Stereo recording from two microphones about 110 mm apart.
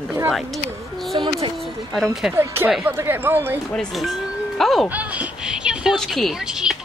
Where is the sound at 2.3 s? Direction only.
20° right (ahead or behind).